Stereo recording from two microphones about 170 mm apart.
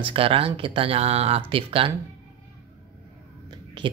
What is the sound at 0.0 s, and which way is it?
Speech, 35° right (ahead or behind).